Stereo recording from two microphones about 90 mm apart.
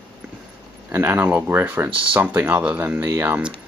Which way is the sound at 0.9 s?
25° right (ahead or behind).